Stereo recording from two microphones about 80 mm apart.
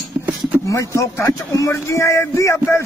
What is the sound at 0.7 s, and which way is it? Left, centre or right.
Speech, left.